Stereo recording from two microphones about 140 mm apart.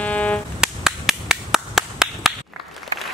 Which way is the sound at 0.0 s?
10° left (ahead or behind).